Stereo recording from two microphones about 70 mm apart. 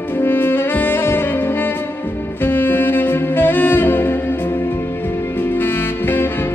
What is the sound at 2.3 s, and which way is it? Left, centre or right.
Saxophone, left.